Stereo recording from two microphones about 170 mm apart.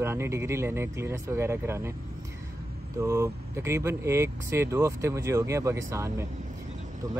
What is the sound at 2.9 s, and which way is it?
Speech, 15° right (ahead or behind).